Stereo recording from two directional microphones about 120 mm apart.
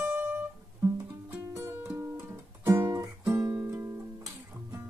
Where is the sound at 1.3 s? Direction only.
20° right (ahead or behind).